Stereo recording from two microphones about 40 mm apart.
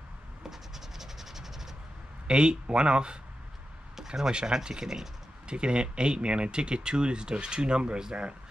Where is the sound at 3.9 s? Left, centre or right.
Centre.